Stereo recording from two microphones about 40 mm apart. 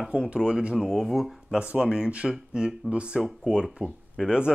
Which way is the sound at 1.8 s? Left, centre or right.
Right.